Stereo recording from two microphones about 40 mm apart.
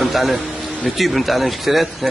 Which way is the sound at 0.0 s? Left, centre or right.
Centre.